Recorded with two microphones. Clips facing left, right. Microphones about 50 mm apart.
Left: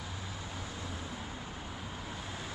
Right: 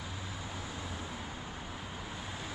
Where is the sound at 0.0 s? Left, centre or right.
Centre.